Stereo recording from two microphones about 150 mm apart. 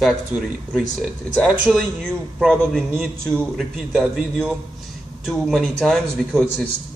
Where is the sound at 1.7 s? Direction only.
5° right (ahead or behind).